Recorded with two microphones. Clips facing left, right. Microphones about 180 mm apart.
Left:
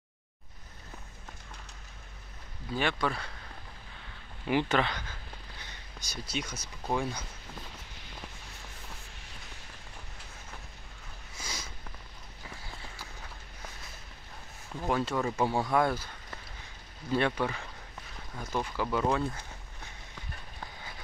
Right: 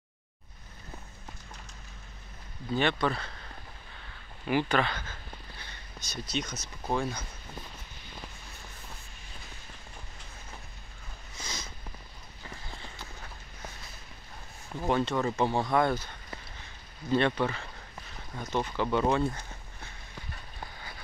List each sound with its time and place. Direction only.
2.7 s speech: 5° left (ahead or behind)
4.5 s speech: 20° left (ahead or behind)
11.3 s a sound: 10° left (ahead or behind)
12.4 s clip-clop: 5° left (ahead or behind)
14.8 s speech: centre (ahead or behind)
17.1 s speech: 10° left (ahead or behind)